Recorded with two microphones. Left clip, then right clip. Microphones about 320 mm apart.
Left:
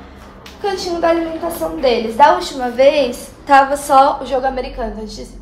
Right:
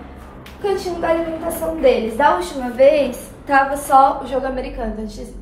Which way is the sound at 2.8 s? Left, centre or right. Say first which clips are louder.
Left 1 dB; left.